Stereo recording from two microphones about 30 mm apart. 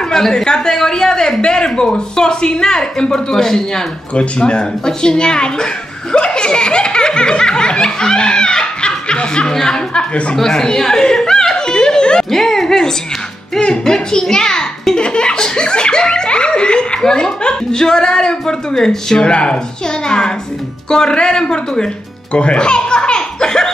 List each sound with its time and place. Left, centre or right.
0.0 s a woman's voice: centre
0.7 s laughter: left
3.3 s speech: centre
4.1 s laughter: left
10.3 s a sound: centre
12.3 s speech: centre
13.8 s laughter: left
19.2 s laughter: left
22.3 s a child's voice: left
22.6 s laughter: left